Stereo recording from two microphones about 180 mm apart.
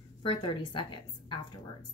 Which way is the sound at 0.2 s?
30° left (ahead or behind).